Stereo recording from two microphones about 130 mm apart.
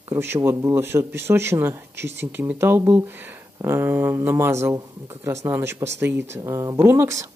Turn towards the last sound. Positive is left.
turn(degrees=-20)  # may be behind; listen again after turning